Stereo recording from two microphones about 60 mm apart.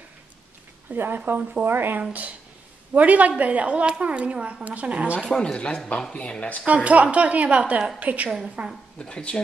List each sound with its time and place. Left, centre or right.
0.9 s speech: right
2.9 s a woman's voice: right
5.3 s speech: centre
6.6 s a woman's voice: right
8.9 s speech: centre